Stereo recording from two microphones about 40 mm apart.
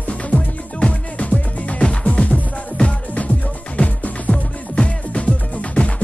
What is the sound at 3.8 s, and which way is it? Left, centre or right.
Music, left.